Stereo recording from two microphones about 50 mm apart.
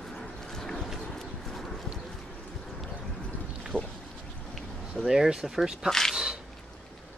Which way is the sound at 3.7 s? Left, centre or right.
Centre.